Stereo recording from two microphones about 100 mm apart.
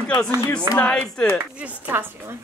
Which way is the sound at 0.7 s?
15° left (ahead or behind).